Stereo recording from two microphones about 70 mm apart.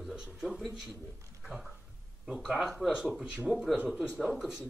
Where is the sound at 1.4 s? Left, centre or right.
Centre.